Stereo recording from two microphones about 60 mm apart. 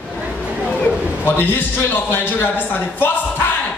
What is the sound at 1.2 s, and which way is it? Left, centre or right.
A man's voice, left.